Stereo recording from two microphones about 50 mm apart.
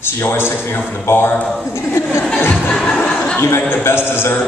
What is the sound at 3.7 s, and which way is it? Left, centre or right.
Speech, left.